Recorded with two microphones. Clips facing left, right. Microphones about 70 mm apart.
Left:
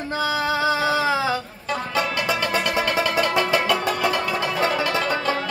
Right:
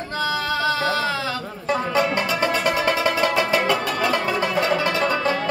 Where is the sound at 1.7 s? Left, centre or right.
Right.